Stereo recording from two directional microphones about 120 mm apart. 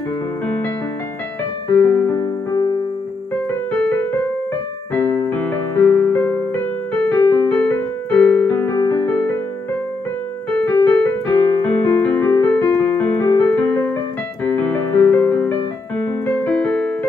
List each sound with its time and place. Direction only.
2.0 s music: 25° left (ahead or behind)
3.7 s music: 10° left (ahead or behind)
4.9 s keyboard: 15° left (ahead or behind)
10.5 s keyboard: 15° left (ahead or behind)
14.4 s piano: 15° left (ahead or behind)
16.1 s keyboard: 15° left (ahead or behind)